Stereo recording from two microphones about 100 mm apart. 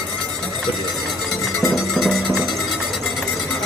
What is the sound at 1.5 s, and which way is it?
Music, centre (ahead or behind).